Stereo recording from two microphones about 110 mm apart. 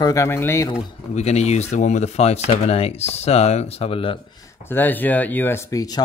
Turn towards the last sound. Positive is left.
turn(degrees=25)  # may be behind; listen again after turning